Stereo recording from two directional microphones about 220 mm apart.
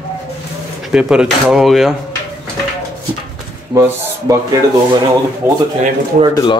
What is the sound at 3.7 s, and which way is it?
Speech, 15° right (ahead or behind).